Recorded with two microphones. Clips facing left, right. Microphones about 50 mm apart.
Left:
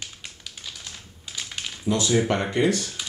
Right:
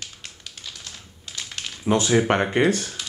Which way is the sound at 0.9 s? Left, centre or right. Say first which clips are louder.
Even; centre.